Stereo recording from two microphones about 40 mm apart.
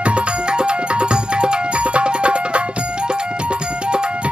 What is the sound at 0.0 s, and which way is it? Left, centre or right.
Music, right.